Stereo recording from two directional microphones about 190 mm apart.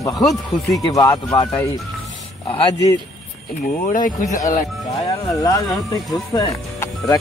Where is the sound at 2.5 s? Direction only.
25° left (ahead or behind).